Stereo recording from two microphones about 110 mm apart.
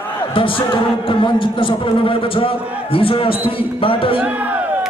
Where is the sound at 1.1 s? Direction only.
50° left (ahead or behind).